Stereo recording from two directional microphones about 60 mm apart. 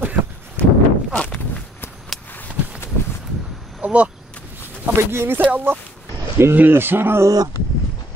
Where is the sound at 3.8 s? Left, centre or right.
Right.